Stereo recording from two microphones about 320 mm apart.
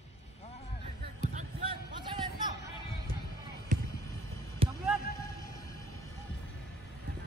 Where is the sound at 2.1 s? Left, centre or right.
Centre.